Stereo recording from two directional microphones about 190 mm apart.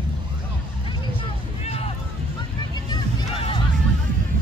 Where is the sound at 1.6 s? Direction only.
35° left (ahead or behind).